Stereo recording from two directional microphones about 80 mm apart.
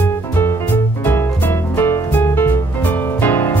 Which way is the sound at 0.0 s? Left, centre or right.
Left.